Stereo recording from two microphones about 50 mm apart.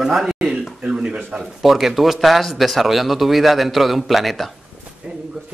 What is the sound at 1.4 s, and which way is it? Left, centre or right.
Speech, centre.